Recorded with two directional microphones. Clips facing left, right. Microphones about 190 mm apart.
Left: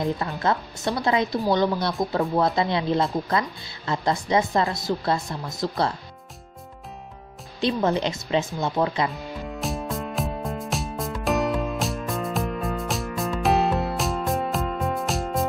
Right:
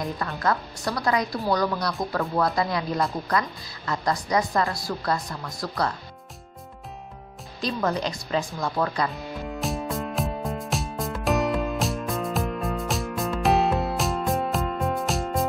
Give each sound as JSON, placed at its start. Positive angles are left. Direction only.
{"t": 0.0, "sound": "a woman's voice", "side_deg": 25}
{"t": 7.6, "sound": "a woman's voice", "side_deg": 25}
{"t": 9.1, "sound": "music", "side_deg": 0}